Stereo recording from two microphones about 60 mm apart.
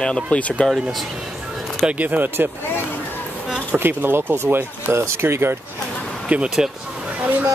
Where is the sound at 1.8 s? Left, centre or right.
Right.